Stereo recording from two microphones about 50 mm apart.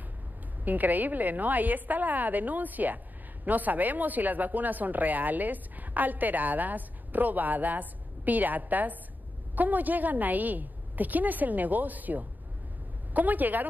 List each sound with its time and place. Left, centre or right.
0.7 s speech: right